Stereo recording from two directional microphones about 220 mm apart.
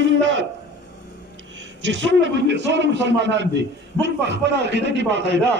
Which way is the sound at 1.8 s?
55° right (ahead or behind).